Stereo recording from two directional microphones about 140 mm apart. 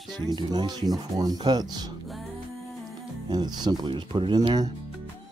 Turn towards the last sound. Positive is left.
turn(degrees=-30)  # may be behind; listen again after turning